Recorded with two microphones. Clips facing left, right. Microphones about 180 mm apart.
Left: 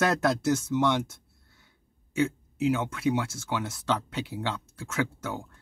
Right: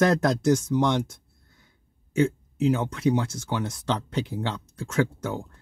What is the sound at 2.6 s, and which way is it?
Speech, 35° right (ahead or behind).